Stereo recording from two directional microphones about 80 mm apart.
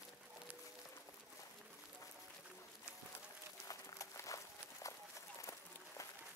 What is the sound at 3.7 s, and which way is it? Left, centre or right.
Run, left.